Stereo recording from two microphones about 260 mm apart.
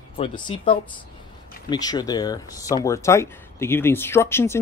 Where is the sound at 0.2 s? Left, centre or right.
Centre.